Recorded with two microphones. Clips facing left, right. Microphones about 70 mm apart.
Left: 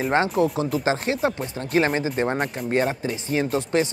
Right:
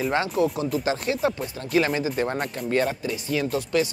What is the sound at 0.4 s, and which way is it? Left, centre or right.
Speech, left.